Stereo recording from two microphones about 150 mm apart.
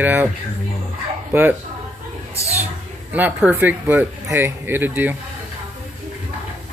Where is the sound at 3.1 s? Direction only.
10° right (ahead or behind).